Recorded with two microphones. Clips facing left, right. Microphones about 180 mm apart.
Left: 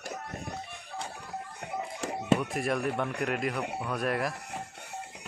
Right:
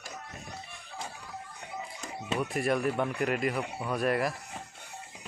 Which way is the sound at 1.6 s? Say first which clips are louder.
Left 7 dB; 55° left (ahead or behind).